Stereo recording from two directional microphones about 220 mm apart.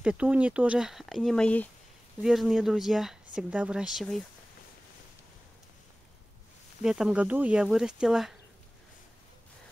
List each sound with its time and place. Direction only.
0.0 s speech: 5° right (ahead or behind)
6.8 s speech: 5° right (ahead or behind)